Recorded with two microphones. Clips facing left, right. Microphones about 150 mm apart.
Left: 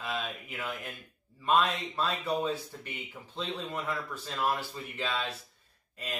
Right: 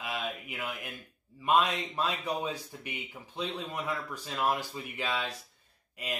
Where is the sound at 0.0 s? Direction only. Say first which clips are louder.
Even; 10° right (ahead or behind).